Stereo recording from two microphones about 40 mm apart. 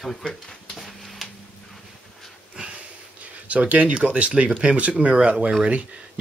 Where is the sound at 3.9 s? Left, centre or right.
Right.